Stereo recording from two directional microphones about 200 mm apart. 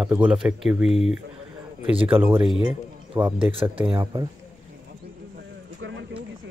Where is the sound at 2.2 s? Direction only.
10° right (ahead or behind).